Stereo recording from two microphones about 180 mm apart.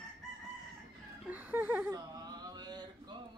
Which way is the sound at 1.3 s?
10° right (ahead or behind).